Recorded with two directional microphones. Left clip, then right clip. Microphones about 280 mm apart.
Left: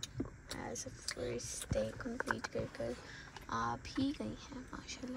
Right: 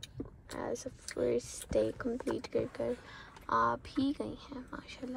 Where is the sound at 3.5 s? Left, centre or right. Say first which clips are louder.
Right 8 dB; centre.